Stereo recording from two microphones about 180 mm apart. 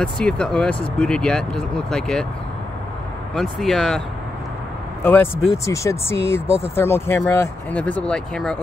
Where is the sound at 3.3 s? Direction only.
Centre (ahead or behind).